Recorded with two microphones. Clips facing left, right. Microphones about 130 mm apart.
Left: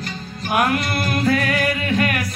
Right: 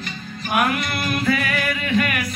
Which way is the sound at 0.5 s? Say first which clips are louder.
Left 2 dB; 45° left (ahead or behind).